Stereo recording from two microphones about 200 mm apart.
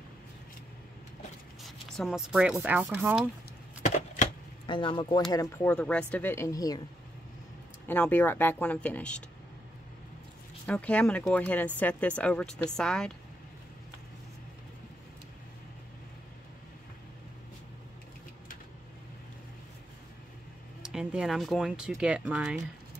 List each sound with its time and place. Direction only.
2.0 s speech: centre (ahead or behind)
3.8 s a sound: 35° left (ahead or behind)
4.7 s speech: 25° left (ahead or behind)
5.3 s speech: 15° left (ahead or behind)
7.9 s speech: 10° left (ahead or behind)
10.7 s speech: 5° left (ahead or behind)
20.8 s speech: 5° right (ahead or behind)